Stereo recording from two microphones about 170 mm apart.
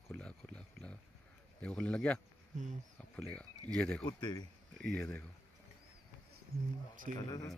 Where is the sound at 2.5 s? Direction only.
45° right (ahead or behind).